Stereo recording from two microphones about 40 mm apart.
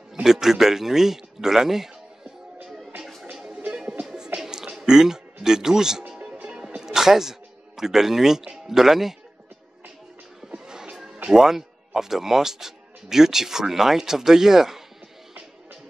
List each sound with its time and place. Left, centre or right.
0.1 s a man's voice: centre
3.3 s music: right
4.4 s a sound: centre
4.7 s speech: centre
6.0 s music: right
6.8 s a sound: centre
8.6 s speech: centre
10.5 s music: right
11.3 s speech: centre